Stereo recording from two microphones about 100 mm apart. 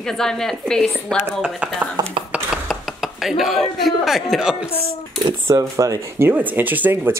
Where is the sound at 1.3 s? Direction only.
10° right (ahead or behind).